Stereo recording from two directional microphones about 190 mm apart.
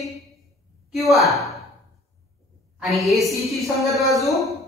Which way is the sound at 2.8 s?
Centre (ahead or behind).